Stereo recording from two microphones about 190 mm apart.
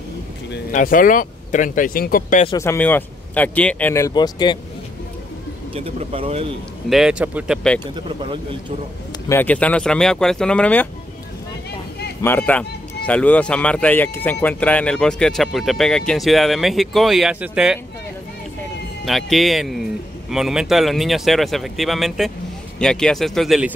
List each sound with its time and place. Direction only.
0.7 s speech: 45° left (ahead or behind)
2.6 s speech: 10° left (ahead or behind)
5.8 s speech: 30° right (ahead or behind)
6.9 s a man's voice: 5° right (ahead or behind)
7.8 s speech: 25° right (ahead or behind)
9.3 s a man's voice: 10° left (ahead or behind)
12.2 s a man's voice: 10° left (ahead or behind); by 17.7 s 5° right (ahead or behind)
19.0 s a man's voice: centre (ahead or behind)